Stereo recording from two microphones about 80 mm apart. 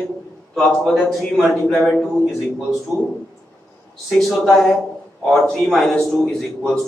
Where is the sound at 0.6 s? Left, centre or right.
Centre.